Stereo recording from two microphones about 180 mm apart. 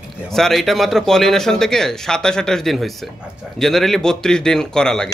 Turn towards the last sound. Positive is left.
turn(degrees=5)  # may be behind; listen again after turning